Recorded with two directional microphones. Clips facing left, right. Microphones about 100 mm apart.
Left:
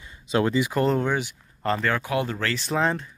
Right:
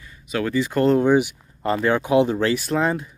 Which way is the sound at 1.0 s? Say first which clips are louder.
Right 9 dB; 15° right (ahead or behind).